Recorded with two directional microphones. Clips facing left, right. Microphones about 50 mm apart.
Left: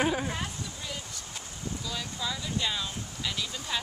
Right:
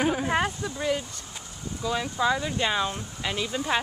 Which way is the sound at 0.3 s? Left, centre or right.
Right.